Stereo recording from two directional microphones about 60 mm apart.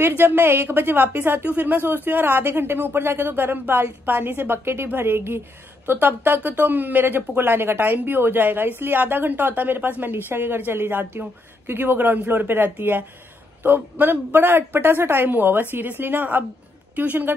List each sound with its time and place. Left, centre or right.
0.0 s a woman's voice: right